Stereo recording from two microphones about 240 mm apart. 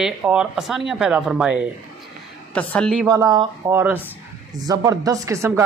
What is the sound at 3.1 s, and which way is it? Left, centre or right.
Speech, centre.